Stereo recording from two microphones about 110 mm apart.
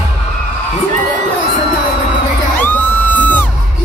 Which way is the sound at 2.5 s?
15° left (ahead or behind).